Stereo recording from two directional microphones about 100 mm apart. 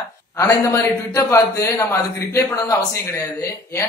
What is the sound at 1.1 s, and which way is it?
A man's voice, 30° left (ahead or behind).